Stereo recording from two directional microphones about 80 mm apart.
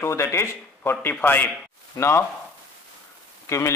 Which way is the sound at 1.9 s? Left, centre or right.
Left.